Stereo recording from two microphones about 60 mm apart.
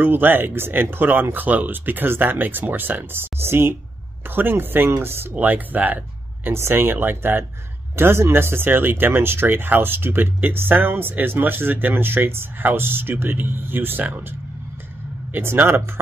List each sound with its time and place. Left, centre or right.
0.0 s speech: right
5.3 s speech: right
6.5 s speech: right
15.3 s speech: right